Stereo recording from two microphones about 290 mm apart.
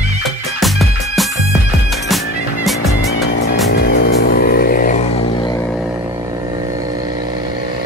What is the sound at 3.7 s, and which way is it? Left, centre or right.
Music, left.